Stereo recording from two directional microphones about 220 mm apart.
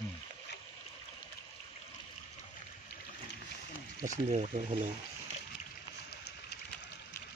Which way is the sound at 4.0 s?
35° right (ahead or behind).